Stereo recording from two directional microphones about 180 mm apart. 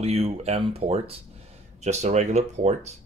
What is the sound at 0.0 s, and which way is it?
Speech, 35° right (ahead or behind).